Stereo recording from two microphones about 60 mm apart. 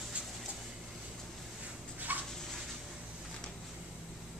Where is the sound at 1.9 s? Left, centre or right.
Right.